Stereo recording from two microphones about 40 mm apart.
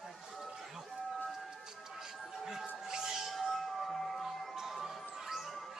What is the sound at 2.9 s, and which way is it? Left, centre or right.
Music, centre.